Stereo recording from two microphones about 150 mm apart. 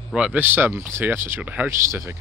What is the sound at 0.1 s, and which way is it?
Speech, 10° right (ahead or behind).